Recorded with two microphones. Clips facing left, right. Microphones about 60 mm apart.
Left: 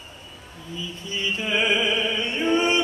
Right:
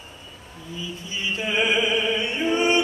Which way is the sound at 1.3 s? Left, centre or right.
Centre.